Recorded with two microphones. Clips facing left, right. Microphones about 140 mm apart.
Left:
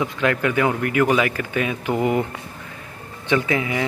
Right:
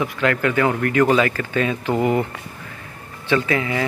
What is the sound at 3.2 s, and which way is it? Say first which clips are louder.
Speech: right 1 dB; 15° left (ahead or behind).